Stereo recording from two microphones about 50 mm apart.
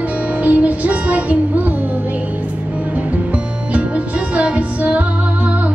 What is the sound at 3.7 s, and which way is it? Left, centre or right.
Music, right.